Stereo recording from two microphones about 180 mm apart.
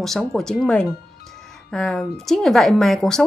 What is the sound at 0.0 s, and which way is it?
Speech, centre (ahead or behind).